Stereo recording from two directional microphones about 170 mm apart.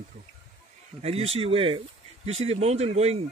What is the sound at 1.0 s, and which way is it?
Speech, 35° right (ahead or behind).